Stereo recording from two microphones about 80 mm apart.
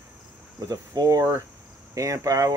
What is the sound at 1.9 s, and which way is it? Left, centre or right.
Speech, right.